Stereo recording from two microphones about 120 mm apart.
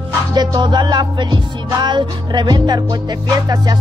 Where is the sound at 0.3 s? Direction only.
35° right (ahead or behind).